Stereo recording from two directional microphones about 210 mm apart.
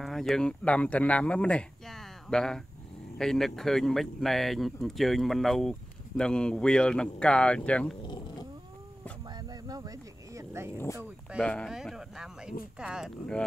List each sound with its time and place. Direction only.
0.0 s speech: centre (ahead or behind)
9.5 s a sound: 15° right (ahead or behind)
11.4 s speech: 5° left (ahead or behind)